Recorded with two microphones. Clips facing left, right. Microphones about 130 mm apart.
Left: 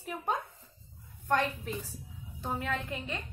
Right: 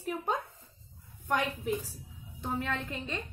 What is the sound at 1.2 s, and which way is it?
Speech, 10° right (ahead or behind).